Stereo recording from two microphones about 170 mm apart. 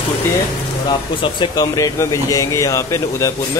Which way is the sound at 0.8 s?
25° left (ahead or behind).